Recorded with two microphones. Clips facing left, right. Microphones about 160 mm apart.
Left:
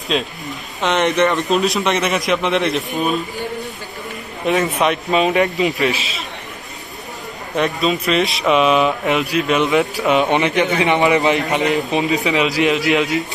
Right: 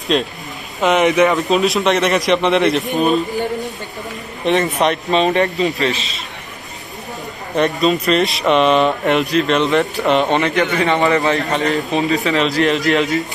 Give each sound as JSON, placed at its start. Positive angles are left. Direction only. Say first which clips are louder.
{"t": 0.1, "sound": "a man's voice", "louder": "right 1 dB", "side_deg": 0}
{"t": 4.5, "sound": "a man's voice", "louder": "right 1 dB", "side_deg": 0}
{"t": 7.5, "sound": "a man's voice", "louder": "right 3 dB", "side_deg": 0}
{"t": 10.3, "sound": "a man's voice", "louder": "even", "side_deg": 15}